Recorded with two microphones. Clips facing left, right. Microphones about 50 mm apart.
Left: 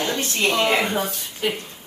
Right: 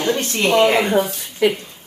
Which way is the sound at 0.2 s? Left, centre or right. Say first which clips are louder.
Right 4 dB; right.